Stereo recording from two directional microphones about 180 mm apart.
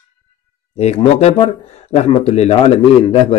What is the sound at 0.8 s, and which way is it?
A man's voice, 35° left (ahead or behind).